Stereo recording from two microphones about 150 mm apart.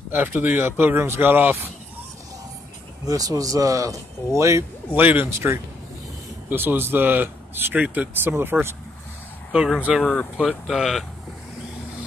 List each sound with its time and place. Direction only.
0.1 s speech: 10° right (ahead or behind)
3.1 s speech: 25° right (ahead or behind); by 11.1 s centre (ahead or behind)